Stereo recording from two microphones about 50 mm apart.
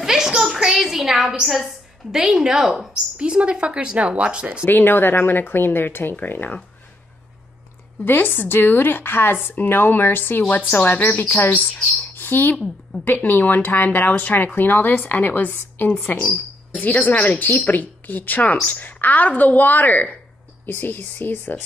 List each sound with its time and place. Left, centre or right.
0.0 s a sound: centre
1.4 s a woman's voice: centre
2.9 s speech: right
4.6 s speech: left
8.0 s speech: left
12.2 s speech: left
12.5 s a woman's voice: centre
13.0 s speech: left